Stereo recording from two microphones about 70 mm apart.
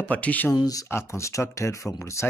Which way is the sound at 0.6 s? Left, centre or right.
Left.